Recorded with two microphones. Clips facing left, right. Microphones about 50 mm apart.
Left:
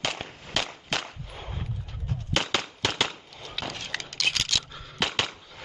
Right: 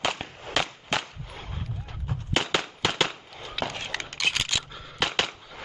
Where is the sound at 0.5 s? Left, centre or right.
Centre.